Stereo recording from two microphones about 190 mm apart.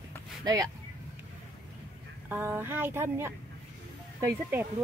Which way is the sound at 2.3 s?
10° right (ahead or behind).